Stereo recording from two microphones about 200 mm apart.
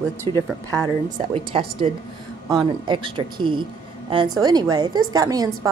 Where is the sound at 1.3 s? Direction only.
25° right (ahead or behind).